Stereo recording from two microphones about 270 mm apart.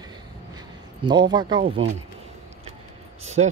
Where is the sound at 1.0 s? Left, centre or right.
Centre.